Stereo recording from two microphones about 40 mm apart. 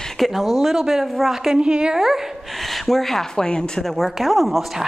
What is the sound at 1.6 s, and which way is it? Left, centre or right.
Speech, right.